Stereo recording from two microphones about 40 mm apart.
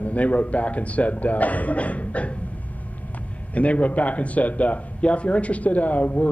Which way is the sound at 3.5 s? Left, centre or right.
Left.